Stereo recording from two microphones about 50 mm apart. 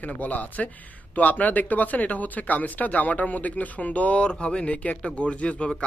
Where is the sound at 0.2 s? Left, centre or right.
Left.